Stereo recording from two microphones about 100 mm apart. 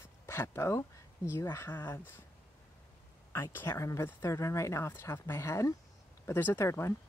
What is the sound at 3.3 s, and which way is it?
Speech, 25° left (ahead or behind).